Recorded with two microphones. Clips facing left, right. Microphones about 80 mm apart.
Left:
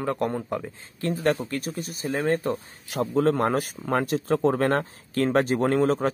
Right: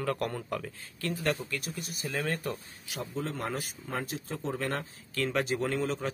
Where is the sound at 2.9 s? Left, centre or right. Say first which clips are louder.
Left 13 dB; left.